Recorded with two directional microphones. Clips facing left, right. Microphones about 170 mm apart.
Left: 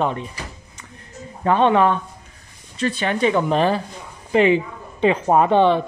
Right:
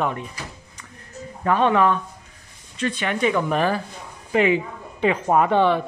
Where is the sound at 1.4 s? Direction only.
30° left (ahead or behind).